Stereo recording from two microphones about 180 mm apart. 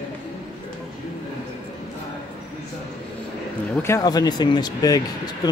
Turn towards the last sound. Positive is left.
turn(degrees=20)  # may be behind; listen again after turning